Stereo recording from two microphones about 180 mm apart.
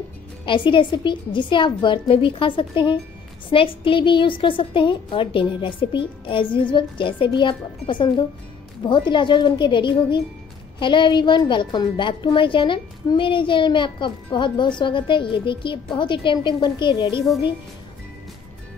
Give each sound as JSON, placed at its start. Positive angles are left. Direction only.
{"t": 0.5, "sound": "a woman's voice", "side_deg": 25}